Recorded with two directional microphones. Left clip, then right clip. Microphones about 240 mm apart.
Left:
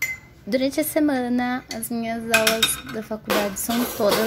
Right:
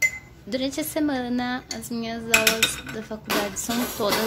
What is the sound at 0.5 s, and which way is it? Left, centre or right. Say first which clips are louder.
Speech: left 5 dB; left.